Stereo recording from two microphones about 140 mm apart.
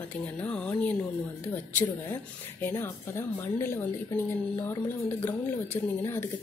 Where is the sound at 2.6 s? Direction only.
20° left (ahead or behind).